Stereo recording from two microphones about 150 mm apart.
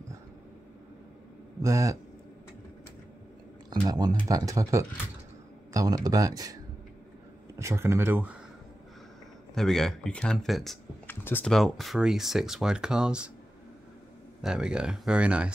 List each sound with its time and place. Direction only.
1.6 s speech: 20° right (ahead or behind)
3.8 s a sound: 25° right (ahead or behind)
4.3 s speech: 20° right (ahead or behind)
9.6 s speech: centre (ahead or behind)
11.1 s speech: 15° left (ahead or behind)
11.5 s speech: centre (ahead or behind)
14.4 s speech: 5° right (ahead or behind)